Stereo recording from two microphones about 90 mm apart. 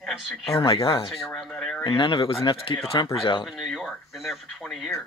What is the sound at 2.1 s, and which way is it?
Speech, 75° left (ahead or behind).